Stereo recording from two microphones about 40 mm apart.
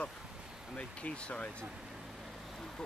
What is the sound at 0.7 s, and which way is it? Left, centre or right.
Speech, left.